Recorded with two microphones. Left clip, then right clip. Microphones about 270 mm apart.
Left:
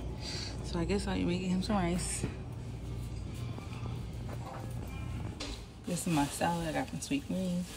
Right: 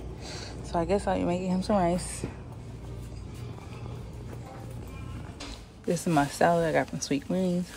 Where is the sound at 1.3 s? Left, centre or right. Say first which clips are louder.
Right 6 dB; right.